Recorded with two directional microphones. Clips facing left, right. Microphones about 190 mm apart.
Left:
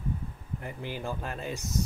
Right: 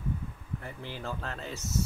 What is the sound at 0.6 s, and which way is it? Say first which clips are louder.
Speech: left 4 dB; 15° left (ahead or behind).